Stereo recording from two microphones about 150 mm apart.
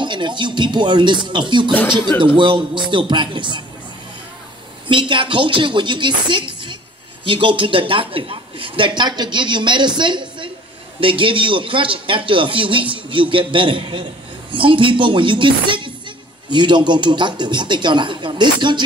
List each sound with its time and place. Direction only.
0.0 s a man's voice: 30° right (ahead or behind)
4.8 s a man's voice: 30° right (ahead or behind)